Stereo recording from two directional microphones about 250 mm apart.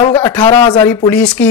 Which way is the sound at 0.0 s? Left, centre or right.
Centre.